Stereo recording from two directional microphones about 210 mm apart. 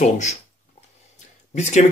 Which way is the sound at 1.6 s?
35° left (ahead or behind).